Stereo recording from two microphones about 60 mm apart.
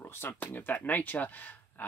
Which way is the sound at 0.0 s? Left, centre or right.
Left.